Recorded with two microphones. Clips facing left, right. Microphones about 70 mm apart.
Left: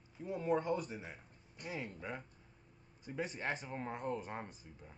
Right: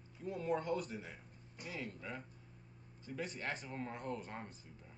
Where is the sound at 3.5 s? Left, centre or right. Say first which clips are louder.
Left 2 dB; centre.